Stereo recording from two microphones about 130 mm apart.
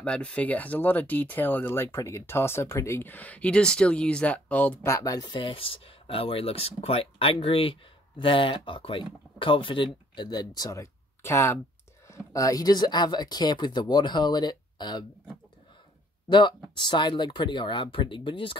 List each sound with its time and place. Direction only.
0.0 s speech: 10° left (ahead or behind)
4.9 s speech: 25° left (ahead or behind)
16.3 s speech: 35° left (ahead or behind)